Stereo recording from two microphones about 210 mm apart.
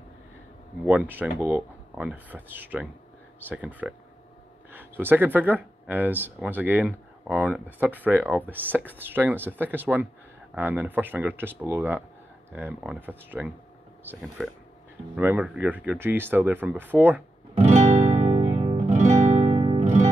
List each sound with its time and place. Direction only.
0.8 s speech: 10° right (ahead or behind)
17.6 s guitar: 30° right (ahead or behind)